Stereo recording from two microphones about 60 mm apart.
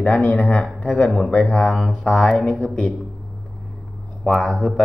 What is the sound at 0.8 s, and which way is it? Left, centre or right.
Speech, left.